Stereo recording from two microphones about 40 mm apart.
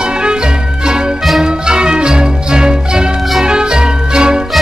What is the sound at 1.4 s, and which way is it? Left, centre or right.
Music, right.